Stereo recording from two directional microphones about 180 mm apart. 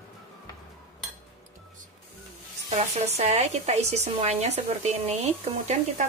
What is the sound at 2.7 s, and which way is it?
Speech, 35° right (ahead or behind).